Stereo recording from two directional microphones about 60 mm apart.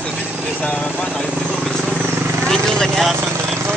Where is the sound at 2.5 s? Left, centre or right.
Centre.